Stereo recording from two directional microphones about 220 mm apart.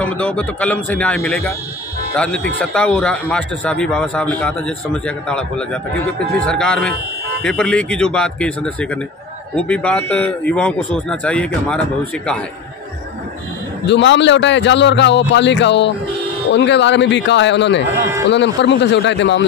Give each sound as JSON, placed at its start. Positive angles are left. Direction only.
{"t": 0.0, "sound": "speech", "side_deg": 5}
{"t": 13.8, "sound": "a man's voice", "side_deg": 55}